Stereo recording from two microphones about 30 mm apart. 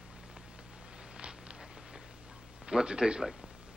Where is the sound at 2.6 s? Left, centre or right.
Right.